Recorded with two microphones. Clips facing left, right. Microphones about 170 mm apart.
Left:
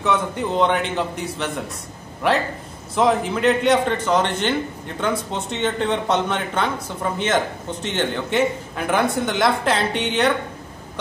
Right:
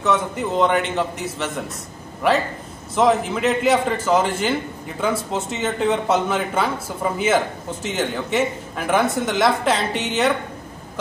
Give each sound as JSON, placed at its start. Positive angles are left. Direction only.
{"t": 0.0, "sound": "a man's voice", "side_deg": 0}